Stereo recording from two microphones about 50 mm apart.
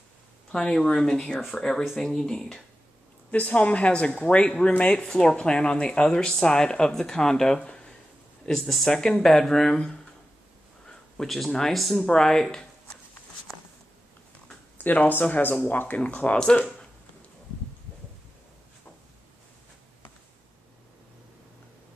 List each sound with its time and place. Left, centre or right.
0.5 s speech: centre
3.3 s speech: left
5.0 s speech: centre
8.5 s speech: centre
12.0 s speech: centre
14.8 s speech: left
16.0 s speech: left